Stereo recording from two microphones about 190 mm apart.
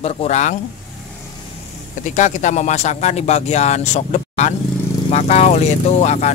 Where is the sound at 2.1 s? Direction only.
40° left (ahead or behind).